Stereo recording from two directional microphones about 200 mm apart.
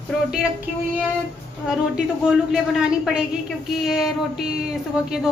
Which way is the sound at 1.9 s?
Centre (ahead or behind).